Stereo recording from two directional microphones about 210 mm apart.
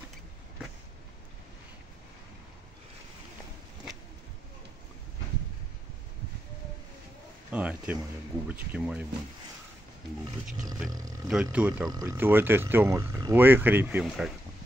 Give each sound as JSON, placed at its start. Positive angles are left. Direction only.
{"t": 7.5, "sound": "a sound", "side_deg": -5}
{"t": 8.5, "sound": "speech", "side_deg": -5}
{"t": 10.2, "sound": "speech", "side_deg": -15}
{"t": 11.2, "sound": "speech", "side_deg": -5}
{"t": 11.9, "sound": "speech", "side_deg": -15}